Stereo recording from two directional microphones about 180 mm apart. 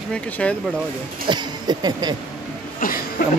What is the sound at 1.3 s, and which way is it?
Speech, 25° right (ahead or behind).